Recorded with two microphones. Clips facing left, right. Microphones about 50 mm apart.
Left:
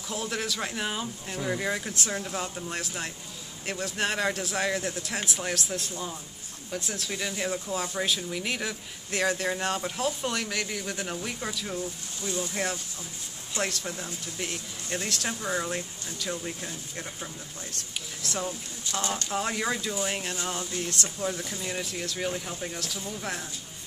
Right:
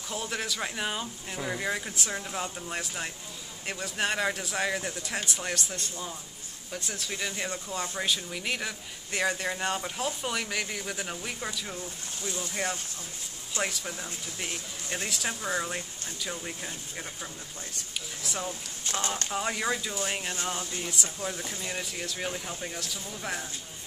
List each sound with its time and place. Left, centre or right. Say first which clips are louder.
0.1 s speech: left 2 dB; centre
18.9 s speech: even; right
19.3 s speech: left 1 dB; centre